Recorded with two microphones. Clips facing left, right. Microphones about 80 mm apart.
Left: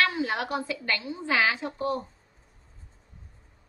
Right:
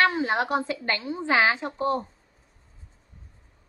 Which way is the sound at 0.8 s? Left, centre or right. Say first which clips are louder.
Right 3 dB; right.